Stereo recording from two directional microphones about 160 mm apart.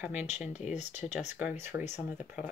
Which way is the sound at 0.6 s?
45° left (ahead or behind).